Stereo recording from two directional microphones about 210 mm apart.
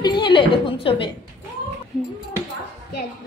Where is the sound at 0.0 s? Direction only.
20° left (ahead or behind).